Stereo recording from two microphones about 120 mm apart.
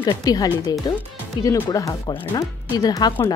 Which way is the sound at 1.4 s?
15° left (ahead or behind).